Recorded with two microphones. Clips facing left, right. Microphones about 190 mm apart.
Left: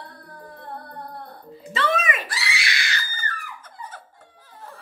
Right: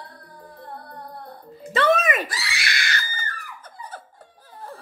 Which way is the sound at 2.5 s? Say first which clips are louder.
Right 2 dB; 50° right (ahead or behind).